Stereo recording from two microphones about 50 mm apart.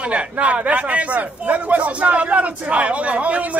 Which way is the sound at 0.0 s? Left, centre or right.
Right.